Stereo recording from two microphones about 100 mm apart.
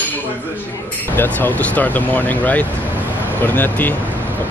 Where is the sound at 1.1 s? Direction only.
20° left (ahead or behind).